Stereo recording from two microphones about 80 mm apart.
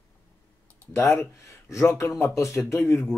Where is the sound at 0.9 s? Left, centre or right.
Left.